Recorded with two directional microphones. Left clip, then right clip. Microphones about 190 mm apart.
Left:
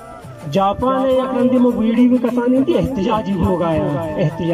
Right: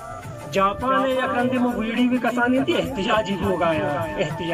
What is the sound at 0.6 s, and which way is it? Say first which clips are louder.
A man's voice: left 4 dB; 25° left (ahead or behind).